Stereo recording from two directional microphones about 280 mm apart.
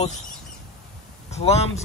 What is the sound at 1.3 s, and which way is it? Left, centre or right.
Speech, left.